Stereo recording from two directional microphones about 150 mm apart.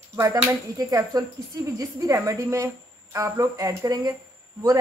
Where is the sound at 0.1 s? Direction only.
20° right (ahead or behind).